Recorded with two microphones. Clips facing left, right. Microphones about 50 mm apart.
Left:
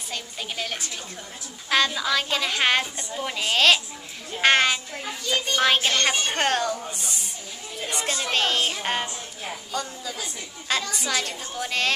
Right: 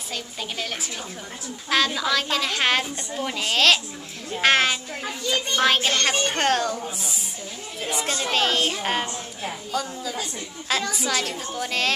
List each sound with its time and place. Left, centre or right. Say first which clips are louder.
0.1 s speech: right 1 dB; centre
2.0 s speech: right 1 dB; centre